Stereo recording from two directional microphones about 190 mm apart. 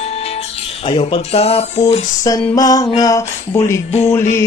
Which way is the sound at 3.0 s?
15° left (ahead or behind).